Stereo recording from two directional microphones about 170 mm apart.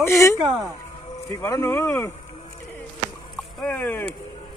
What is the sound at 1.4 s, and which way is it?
Speech, 15° left (ahead or behind).